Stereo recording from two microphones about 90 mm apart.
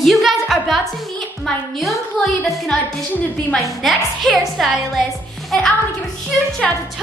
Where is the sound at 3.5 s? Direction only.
Centre (ahead or behind).